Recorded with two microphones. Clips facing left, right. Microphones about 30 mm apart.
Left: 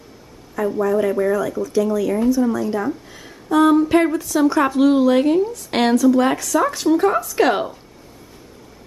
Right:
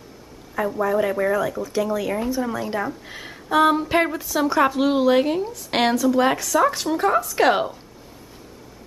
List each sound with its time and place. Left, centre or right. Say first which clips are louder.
0.7 s speech: left 3 dB; centre